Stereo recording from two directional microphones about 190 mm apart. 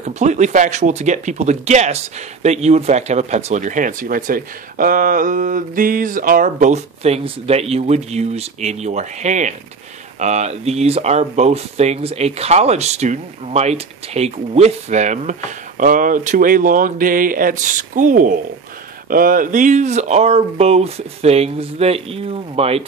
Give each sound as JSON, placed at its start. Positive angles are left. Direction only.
{"t": 0.0, "sound": "speech", "side_deg": -35}